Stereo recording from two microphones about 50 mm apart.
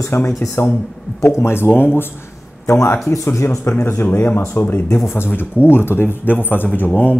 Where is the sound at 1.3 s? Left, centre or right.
Left.